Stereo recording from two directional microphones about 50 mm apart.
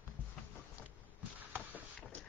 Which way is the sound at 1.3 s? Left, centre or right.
Right.